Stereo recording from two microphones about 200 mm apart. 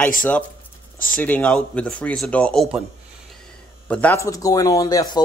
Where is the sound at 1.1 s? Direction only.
5° left (ahead or behind).